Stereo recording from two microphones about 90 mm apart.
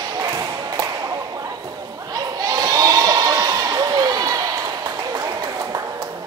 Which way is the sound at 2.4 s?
45° right (ahead or behind).